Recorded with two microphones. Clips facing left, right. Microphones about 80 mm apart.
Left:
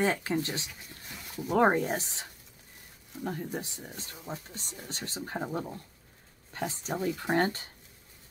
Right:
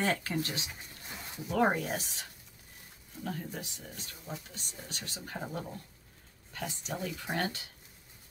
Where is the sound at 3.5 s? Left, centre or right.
Left.